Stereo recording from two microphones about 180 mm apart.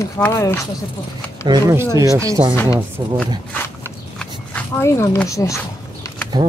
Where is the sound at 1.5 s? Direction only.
20° right (ahead or behind).